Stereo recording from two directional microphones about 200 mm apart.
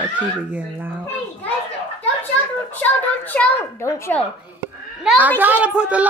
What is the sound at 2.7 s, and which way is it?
A child's voice, 10° left (ahead or behind).